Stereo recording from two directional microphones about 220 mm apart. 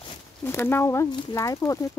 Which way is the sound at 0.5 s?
10° left (ahead or behind).